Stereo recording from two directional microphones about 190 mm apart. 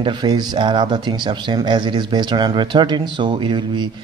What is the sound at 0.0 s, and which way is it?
A man's voice, 25° right (ahead or behind).